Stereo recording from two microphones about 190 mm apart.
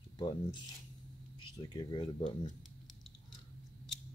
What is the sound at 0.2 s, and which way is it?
Speech, 25° left (ahead or behind).